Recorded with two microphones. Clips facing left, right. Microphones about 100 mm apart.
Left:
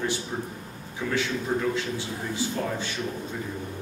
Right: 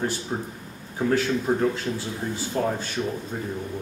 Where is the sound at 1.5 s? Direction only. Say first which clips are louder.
Right 2 dB; 40° right (ahead or behind).